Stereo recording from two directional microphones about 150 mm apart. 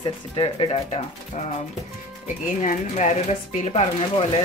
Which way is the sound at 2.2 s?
60° left (ahead or behind).